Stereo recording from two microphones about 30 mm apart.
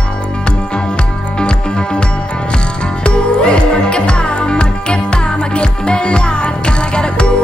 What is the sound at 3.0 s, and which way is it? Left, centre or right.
Music, left.